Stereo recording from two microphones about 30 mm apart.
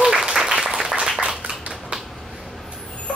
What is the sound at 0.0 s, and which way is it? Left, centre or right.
Applause, centre.